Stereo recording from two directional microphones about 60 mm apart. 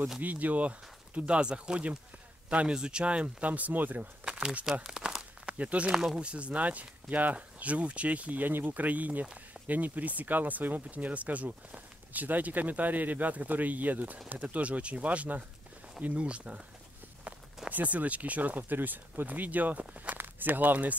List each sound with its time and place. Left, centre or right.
0.2 s speech: right
4.2 s crumpling: centre
4.8 s a sound: centre
5.9 s speech: centre
6.1 s speech: centre
17.6 s speech: right